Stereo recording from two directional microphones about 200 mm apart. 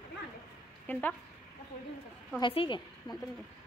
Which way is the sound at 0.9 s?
10° left (ahead or behind).